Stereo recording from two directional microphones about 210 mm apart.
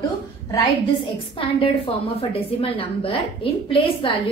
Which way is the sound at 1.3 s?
25° left (ahead or behind).